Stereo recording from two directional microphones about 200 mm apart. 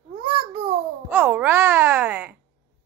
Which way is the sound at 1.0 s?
10° right (ahead or behind).